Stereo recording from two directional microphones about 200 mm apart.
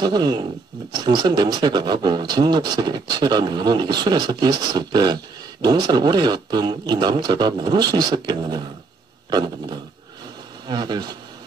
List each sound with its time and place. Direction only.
0.0 s speech: 20° right (ahead or behind)